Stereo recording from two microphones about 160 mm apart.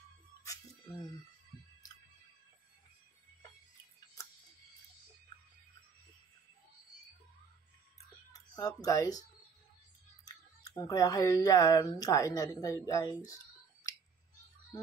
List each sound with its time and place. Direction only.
8.3 s speech: 20° left (ahead or behind)
10.2 s speech: 25° left (ahead or behind)